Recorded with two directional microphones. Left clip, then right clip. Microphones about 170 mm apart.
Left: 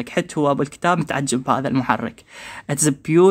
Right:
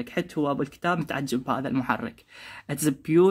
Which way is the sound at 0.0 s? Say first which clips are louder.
Left 8 dB; 35° left (ahead or behind).